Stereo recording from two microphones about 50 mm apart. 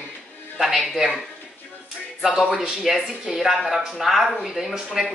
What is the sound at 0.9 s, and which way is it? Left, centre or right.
Speech, centre.